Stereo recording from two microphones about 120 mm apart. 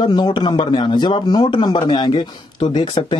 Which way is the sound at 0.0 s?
40° left (ahead or behind).